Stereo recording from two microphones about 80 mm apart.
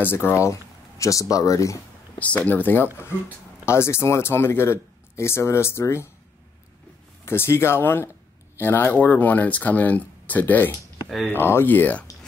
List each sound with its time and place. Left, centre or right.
0.0 s speech: left
2.1 s speech: centre; by 6.0 s left
7.2 s speech: left